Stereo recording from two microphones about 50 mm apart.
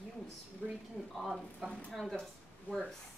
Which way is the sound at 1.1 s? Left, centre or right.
Centre.